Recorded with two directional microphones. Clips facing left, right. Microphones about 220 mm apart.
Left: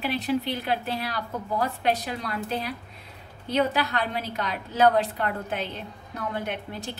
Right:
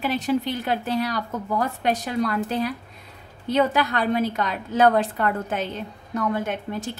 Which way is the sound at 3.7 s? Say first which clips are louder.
Right 6 dB; 50° right (ahead or behind).